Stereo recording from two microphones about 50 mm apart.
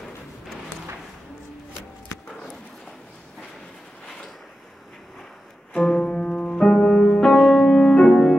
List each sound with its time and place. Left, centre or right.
5.8 s music: centre